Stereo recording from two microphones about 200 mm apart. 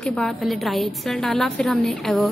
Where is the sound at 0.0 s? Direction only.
5° left (ahead or behind).